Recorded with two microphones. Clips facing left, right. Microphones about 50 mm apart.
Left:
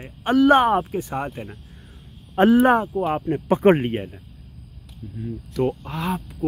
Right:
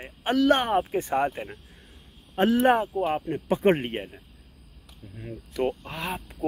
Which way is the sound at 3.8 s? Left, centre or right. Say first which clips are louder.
Left 6 dB; centre.